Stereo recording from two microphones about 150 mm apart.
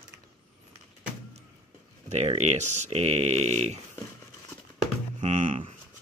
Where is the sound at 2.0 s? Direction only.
50° right (ahead or behind).